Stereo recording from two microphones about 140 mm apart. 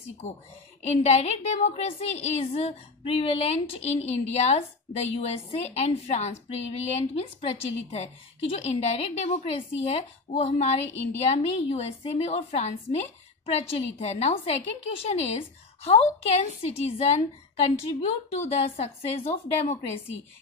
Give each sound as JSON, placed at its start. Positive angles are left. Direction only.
{"t": 0.2, "sound": "a woman's voice", "side_deg": 50}
{"t": 18.8, "sound": "a woman's voice", "side_deg": 45}